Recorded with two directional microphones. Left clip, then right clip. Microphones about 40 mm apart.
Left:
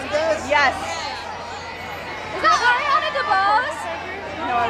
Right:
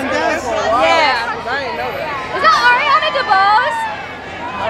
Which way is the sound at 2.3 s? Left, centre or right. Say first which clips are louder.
Right 6 dB; left.